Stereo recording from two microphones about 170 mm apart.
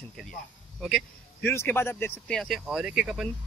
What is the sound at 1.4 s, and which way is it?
Speech, 10° left (ahead or behind).